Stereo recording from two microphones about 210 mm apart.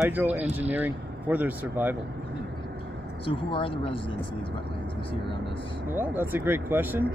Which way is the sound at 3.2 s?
25° left (ahead or behind).